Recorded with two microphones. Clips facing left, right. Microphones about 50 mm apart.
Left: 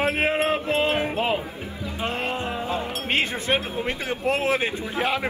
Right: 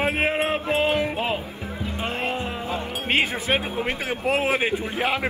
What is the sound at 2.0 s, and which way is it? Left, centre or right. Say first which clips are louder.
Music: left 1 dB; centre.